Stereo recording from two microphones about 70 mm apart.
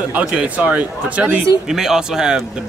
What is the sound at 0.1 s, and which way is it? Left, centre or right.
Speech, centre.